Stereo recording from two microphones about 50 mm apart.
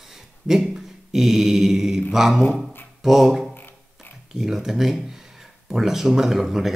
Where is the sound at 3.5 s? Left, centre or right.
Left.